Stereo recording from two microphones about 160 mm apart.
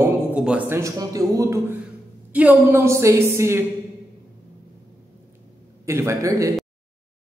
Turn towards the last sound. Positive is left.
turn(degrees=-20)  # may be behind; listen again after turning